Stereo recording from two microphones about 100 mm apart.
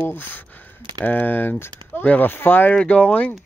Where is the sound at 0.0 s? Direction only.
20° left (ahead or behind).